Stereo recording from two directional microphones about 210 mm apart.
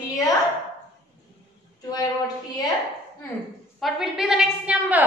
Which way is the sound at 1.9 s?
20° left (ahead or behind).